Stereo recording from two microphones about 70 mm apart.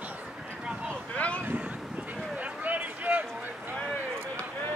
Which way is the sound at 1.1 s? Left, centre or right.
Centre.